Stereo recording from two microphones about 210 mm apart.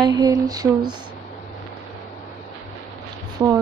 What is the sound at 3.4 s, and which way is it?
Speech, 15° right (ahead or behind).